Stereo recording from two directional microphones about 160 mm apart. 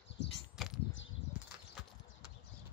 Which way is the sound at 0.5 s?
5° right (ahead or behind).